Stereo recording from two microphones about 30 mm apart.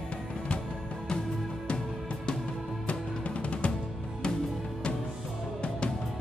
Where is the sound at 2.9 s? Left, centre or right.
Left.